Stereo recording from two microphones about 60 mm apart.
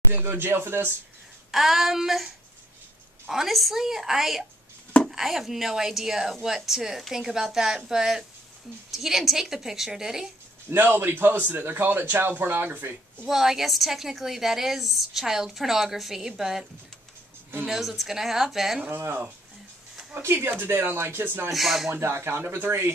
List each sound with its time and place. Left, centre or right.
0.1 s a man's voice: right
1.5 s a woman's voice: centre
3.3 s a woman's voice: centre
10.7 s a man's voice: right
13.3 s a woman's voice: centre
17.6 s a woman's voice: centre
18.9 s a man's voice: right
21.5 s a woman's voice: centre
21.9 s a man's voice: right